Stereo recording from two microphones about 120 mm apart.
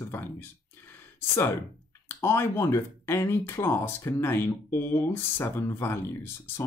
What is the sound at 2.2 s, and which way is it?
Speech, 20° left (ahead or behind).